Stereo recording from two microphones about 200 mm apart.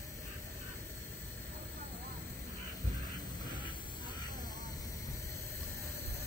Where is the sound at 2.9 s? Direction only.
20° left (ahead or behind).